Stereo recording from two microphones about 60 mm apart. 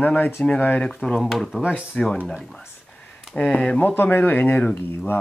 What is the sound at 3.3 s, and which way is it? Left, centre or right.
Speech, centre.